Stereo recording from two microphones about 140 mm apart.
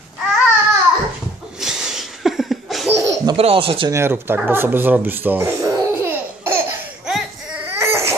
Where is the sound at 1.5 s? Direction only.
5° right (ahead or behind).